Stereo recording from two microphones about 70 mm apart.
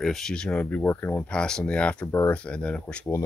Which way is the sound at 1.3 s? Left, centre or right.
Centre.